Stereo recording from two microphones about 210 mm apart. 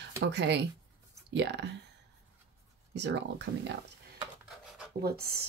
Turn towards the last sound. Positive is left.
turn(degrees=-45)  # may be behind; listen again after turning